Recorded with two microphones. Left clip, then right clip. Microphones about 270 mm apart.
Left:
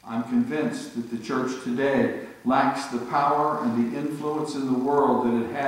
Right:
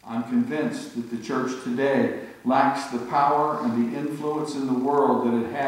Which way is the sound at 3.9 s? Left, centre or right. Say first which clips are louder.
Right 1 dB; right.